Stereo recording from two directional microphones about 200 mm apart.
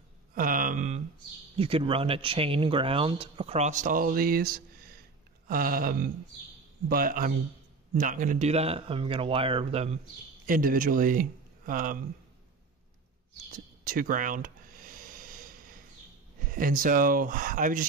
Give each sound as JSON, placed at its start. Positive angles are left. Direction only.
{"t": 0.3, "sound": "mantra", "side_deg": -45}
{"t": 1.6, "sound": "speech", "side_deg": -30}
{"t": 10.4, "sound": "speech", "side_deg": -45}
{"t": 13.8, "sound": "a sound", "side_deg": -45}
{"t": 16.4, "sound": "speech", "side_deg": -45}